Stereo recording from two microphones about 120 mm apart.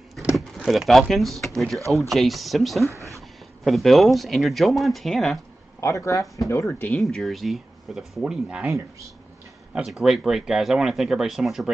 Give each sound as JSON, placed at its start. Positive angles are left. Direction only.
{"t": 0.6, "sound": "speech", "side_deg": 0}
{"t": 5.8, "sound": "speech", "side_deg": 25}
{"t": 6.7, "sound": "speech", "side_deg": 15}
{"t": 7.0, "sound": "speech", "side_deg": 5}
{"t": 9.8, "sound": "speech", "side_deg": -5}